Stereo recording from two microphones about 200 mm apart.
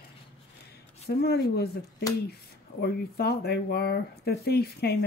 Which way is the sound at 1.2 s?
55° left (ahead or behind).